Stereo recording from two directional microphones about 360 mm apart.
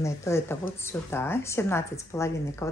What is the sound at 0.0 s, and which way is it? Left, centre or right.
Speech, centre.